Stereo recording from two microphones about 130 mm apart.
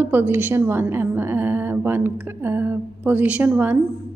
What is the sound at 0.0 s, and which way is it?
A woman's voice, 15° right (ahead or behind).